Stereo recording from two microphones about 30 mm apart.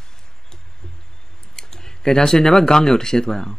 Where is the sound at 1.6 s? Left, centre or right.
Centre.